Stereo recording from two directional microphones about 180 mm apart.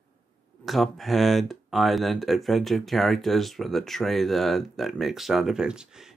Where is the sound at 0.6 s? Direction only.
Centre (ahead or behind).